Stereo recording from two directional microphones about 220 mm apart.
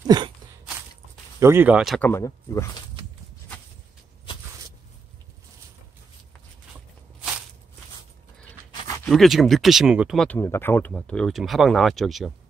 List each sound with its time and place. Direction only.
0.0 s a sound: 20° right (ahead or behind)
1.4 s speech: 10° right (ahead or behind)
2.0 s speech: 10° left (ahead or behind)
9.0 s speech: centre (ahead or behind)